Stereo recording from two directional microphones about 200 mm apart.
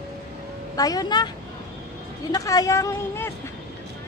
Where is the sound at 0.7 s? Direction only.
20° left (ahead or behind).